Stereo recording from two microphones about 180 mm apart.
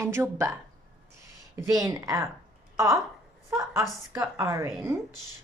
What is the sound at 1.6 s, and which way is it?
Speech, 20° right (ahead or behind).